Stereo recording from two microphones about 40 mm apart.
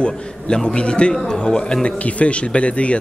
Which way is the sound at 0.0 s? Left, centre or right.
Left.